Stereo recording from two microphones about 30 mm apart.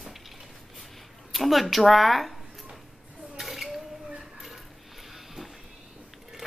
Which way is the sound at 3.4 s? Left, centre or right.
Centre.